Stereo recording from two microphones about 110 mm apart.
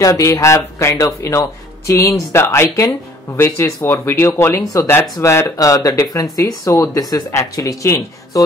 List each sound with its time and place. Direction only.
0.0 s speech: 30° left (ahead or behind)